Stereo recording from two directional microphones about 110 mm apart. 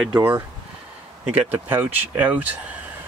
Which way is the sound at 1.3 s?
15° right (ahead or behind).